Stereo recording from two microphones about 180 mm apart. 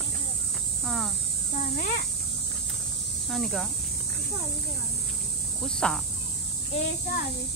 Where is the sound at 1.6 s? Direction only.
60° left (ahead or behind).